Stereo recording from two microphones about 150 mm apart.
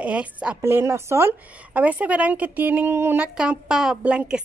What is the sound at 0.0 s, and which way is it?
Speech, 10° right (ahead or behind).